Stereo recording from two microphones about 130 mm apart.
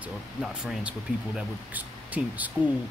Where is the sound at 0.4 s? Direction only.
5° right (ahead or behind).